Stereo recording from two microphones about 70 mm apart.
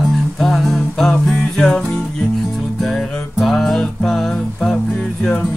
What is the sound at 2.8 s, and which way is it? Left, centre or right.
Music, centre.